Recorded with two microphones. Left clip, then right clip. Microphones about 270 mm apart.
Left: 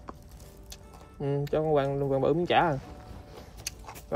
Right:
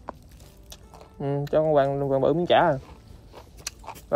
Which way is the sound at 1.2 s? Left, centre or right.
Centre.